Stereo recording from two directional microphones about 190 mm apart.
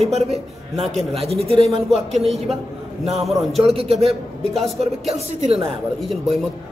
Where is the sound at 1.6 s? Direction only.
Centre (ahead or behind).